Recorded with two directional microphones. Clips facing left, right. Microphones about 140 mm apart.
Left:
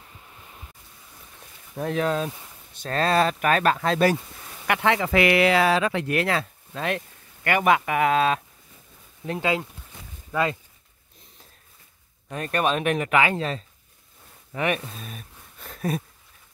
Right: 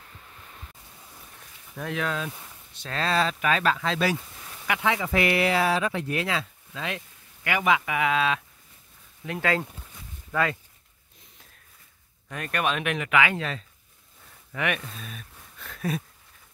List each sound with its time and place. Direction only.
0.3 s waves: 10° left (ahead or behind)
1.8 s speech: 35° left (ahead or behind)
2.7 s speech: 45° left (ahead or behind)
4.6 s speech: 65° left (ahead or behind); by 8.4 s 40° left (ahead or behind)
10.3 s speech: 25° left (ahead or behind)
12.3 s speech: 30° left (ahead or behind)